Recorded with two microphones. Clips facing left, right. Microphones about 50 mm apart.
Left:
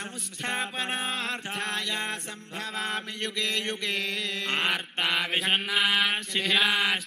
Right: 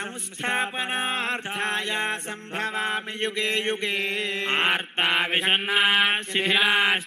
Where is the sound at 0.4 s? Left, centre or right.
Right.